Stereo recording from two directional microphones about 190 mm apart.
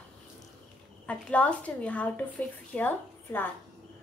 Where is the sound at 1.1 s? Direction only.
5° left (ahead or behind).